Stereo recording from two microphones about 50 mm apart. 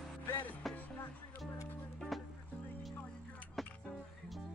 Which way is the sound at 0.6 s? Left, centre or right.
Centre.